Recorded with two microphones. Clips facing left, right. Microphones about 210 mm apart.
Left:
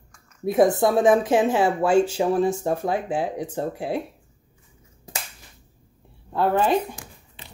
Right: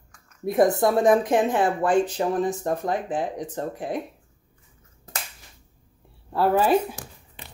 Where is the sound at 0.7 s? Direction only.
Centre (ahead or behind).